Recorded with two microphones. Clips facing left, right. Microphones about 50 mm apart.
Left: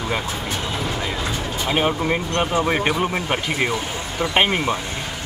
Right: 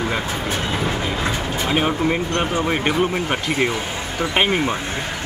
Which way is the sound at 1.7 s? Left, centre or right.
Centre.